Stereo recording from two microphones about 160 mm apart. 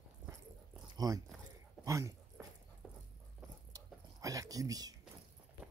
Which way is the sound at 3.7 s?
20° right (ahead or behind).